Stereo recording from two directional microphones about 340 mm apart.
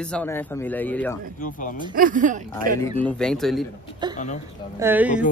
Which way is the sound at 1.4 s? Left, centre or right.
Left.